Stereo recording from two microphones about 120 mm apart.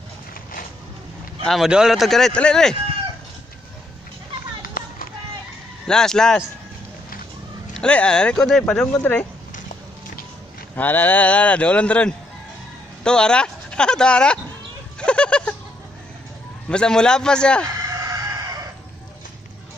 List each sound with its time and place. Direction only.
1.4 s speech: centre (ahead or behind)
5.9 s speech: 5° left (ahead or behind)
7.7 s speech: 10° left (ahead or behind)
10.8 s speech: 15° left (ahead or behind)
15.0 s a sound: 10° left (ahead or behind)
16.6 s speech: 5° left (ahead or behind)
18.0 s chicken: 25° right (ahead or behind)